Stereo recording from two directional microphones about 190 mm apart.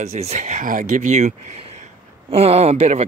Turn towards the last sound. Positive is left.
turn(degrees=-35)  # may be behind; listen again after turning